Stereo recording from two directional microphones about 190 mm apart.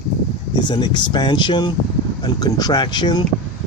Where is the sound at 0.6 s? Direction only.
25° left (ahead or behind).